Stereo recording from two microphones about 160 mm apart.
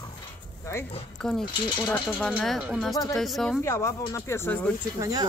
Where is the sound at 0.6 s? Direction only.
15° left (ahead or behind).